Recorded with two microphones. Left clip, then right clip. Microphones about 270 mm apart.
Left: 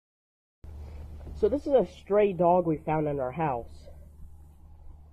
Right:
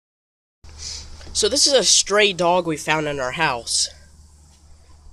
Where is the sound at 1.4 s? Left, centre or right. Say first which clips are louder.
Right 7 dB; centre.